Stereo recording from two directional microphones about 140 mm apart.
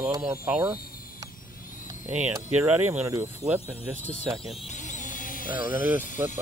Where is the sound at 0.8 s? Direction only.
90° left.